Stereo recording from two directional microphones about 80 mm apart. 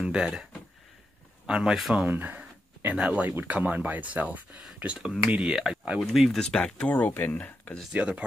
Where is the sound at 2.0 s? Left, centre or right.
Right.